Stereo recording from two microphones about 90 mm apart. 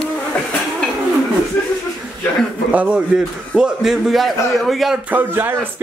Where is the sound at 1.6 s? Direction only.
10° left (ahead or behind).